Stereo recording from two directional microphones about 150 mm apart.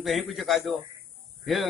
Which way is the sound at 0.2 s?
Centre (ahead or behind).